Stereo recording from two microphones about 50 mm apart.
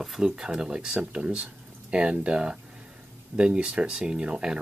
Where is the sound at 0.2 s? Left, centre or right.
Centre.